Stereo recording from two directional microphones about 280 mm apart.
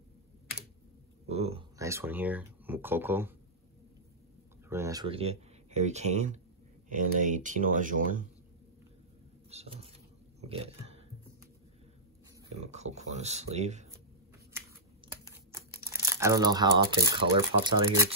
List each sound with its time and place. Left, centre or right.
1.2 s speech: right
4.6 s speech: centre; by 8.3 s right
9.5 s speech: right
12.7 s speech: right
15.2 s speech: centre